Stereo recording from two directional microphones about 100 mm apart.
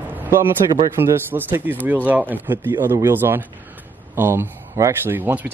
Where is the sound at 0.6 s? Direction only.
40° right (ahead or behind).